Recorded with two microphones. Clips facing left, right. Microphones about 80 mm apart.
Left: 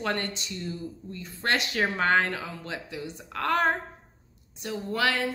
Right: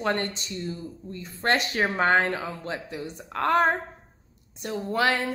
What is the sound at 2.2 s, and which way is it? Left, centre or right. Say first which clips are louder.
A woman's voice: right 4 dB; right.